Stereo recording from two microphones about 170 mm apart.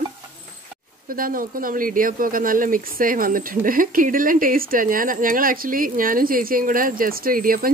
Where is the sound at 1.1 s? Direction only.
55° right (ahead or behind).